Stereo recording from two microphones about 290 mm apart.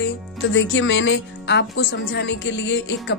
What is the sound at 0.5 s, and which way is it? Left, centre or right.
A woman's voice, left.